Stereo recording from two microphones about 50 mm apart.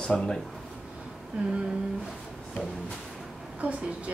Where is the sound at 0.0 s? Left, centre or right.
Centre.